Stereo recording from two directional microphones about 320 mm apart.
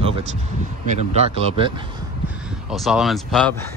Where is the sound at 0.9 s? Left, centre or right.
Centre.